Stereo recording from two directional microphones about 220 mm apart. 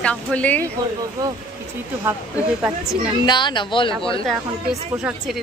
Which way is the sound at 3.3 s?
20° left (ahead or behind).